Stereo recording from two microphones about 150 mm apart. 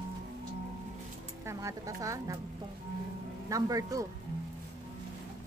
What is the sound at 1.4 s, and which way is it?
Speech, 20° right (ahead or behind).